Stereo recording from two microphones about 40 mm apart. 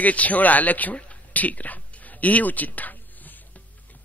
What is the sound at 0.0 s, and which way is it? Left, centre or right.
Speech, left.